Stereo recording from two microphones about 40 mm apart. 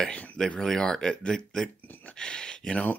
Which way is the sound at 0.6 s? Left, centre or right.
Centre.